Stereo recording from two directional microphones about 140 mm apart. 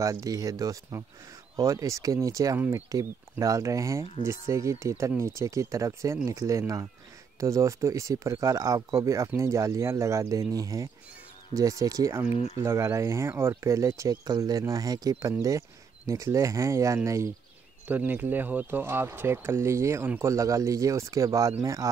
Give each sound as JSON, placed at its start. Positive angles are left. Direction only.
{"t": 0.0, "sound": "speech", "side_deg": -25}
{"t": 12.3, "sound": "speech", "side_deg": 45}
{"t": 12.6, "sound": "speech", "side_deg": -20}